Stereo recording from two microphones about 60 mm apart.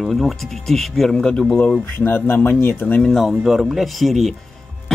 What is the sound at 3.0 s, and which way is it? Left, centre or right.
Speech, centre.